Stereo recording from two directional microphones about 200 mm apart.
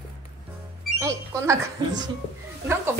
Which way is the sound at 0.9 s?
15° right (ahead or behind).